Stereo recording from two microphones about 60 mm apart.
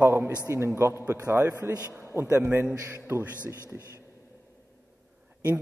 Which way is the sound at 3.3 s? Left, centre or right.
Left.